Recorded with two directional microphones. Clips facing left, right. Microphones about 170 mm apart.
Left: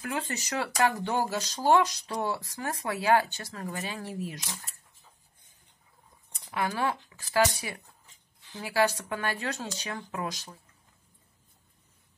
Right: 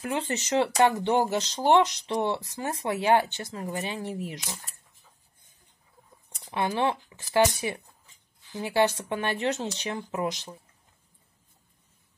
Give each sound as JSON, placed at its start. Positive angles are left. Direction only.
{"t": 0.0, "sound": "speech", "side_deg": -25}
{"t": 6.5, "sound": "speech", "side_deg": -25}